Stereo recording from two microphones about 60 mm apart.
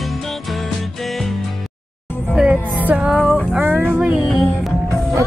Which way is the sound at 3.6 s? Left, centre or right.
Right.